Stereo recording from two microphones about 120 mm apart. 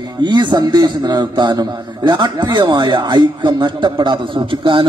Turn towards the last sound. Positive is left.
turn(degrees=-45)  # may be behind; listen again after turning